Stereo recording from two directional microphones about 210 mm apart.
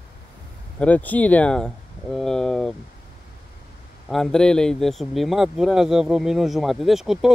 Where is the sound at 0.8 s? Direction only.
5° left (ahead or behind).